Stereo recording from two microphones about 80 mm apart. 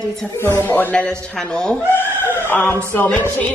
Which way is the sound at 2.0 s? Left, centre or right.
Left.